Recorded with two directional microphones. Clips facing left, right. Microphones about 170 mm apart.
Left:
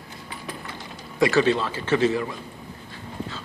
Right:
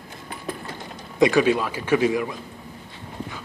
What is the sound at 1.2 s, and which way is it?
A man's voice, 15° right (ahead or behind).